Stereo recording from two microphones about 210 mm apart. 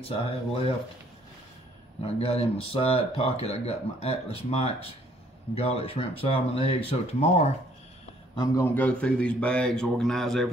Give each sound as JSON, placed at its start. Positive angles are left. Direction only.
{"t": 0.0, "sound": "speech", "side_deg": 25}
{"t": 2.0, "sound": "speech", "side_deg": 30}
{"t": 8.4, "sound": "a man's voice", "side_deg": 10}